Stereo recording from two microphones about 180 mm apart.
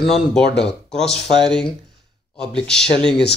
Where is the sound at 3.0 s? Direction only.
5° left (ahead or behind).